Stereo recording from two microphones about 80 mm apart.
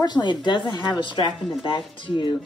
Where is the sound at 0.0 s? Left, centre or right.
Left.